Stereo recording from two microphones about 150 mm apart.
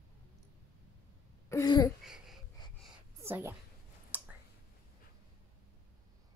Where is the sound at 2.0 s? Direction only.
5° right (ahead or behind).